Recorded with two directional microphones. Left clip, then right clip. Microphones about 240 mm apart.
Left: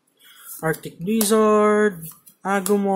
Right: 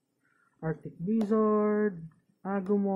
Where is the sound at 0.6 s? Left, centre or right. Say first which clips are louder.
Left 12 dB; left.